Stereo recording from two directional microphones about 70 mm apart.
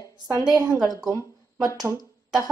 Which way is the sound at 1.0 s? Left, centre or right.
Right.